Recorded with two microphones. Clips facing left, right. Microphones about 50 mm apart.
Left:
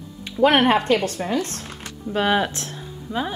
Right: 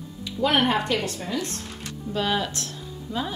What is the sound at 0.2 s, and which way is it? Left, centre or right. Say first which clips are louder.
A woman's voice: left 5 dB; left.